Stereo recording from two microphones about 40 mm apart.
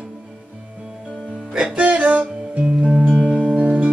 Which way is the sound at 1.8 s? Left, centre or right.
Right.